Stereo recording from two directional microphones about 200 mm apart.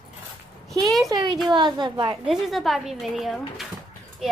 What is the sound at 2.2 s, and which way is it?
Speech, centre (ahead or behind).